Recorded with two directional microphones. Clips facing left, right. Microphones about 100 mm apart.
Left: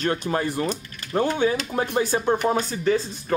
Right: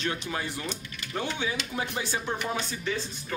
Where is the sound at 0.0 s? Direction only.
45° left (ahead or behind).